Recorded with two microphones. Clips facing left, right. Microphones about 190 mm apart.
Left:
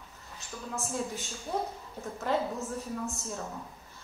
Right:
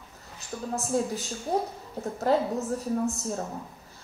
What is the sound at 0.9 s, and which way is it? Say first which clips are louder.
A woman's voice: right 10 dB; 35° right (ahead or behind).